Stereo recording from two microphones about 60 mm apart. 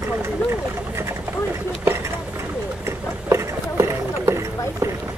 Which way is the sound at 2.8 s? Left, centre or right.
Right.